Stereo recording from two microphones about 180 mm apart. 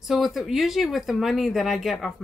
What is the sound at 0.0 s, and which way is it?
Speech, centre (ahead or behind).